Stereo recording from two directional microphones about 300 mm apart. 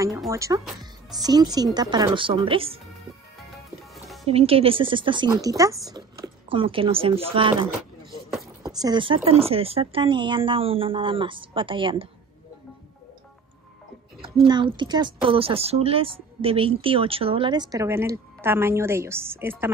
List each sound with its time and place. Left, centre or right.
0.3 s a woman's voice: centre
3.9 s music: centre
4.3 s a woman's voice: centre
8.3 s a sound: centre
8.7 s a woman's voice: centre
14.2 s a woman's voice: centre